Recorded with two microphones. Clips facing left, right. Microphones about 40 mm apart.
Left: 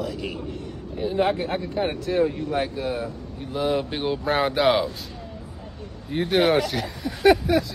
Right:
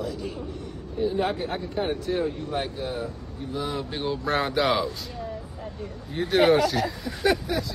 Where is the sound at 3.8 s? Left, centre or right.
Left.